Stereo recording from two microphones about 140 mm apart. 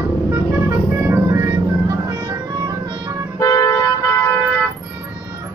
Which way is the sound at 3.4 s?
25° left (ahead or behind).